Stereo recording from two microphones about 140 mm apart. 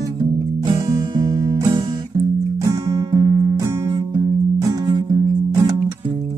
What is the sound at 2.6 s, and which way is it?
Music, 25° right (ahead or behind).